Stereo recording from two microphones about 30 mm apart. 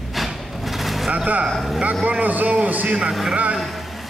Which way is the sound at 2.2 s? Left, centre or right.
Right.